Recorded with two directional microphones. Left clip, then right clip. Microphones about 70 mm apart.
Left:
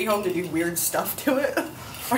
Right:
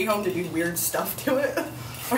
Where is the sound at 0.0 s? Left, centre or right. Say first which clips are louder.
Left 1 dB; centre.